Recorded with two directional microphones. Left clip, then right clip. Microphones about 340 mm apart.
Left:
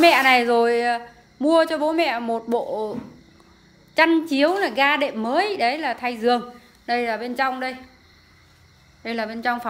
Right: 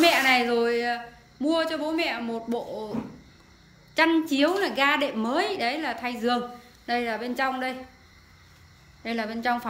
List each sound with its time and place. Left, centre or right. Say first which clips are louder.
0.0 s a woman's voice: left 5 dB; centre
3.9 s a woman's voice: left 4 dB; centre
9.0 s a woman's voice: left 3 dB; centre